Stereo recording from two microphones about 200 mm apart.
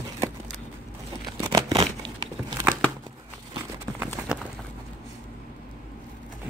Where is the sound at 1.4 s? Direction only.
20° right (ahead or behind).